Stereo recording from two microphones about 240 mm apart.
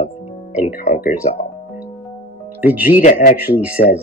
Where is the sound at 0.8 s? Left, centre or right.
Left.